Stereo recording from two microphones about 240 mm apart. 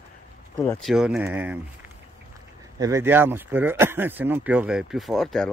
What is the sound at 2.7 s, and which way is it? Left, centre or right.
Speech, centre.